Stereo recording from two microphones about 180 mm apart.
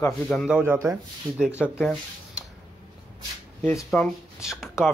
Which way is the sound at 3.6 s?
15° left (ahead or behind).